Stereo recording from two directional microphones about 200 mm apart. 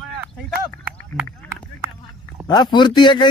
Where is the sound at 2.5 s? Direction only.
20° left (ahead or behind).